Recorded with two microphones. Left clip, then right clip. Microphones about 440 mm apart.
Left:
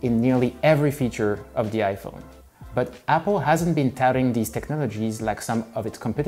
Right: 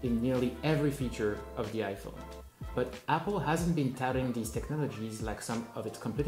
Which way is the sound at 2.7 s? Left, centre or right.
Left.